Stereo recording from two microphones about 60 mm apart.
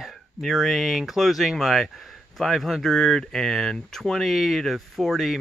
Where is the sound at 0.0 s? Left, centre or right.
Centre.